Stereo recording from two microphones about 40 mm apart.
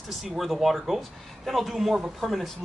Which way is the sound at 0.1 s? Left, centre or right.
Centre.